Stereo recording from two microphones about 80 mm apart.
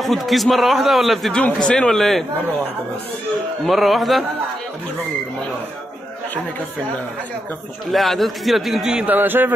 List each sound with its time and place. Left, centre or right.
0.0 s a man's voice: centre
3.6 s a man's voice: centre
7.9 s a man's voice: centre
9.0 s a man's voice: right